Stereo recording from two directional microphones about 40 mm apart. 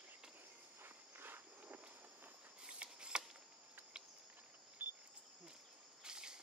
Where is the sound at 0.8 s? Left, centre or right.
Right.